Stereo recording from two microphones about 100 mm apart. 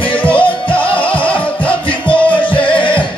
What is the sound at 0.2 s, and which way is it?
Music, 15° left (ahead or behind).